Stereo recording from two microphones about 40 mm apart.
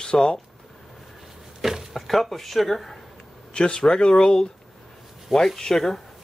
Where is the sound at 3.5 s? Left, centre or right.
Left.